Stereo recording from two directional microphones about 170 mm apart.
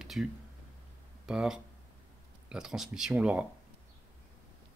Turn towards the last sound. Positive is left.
turn(degrees=-5)  # may be behind; listen again after turning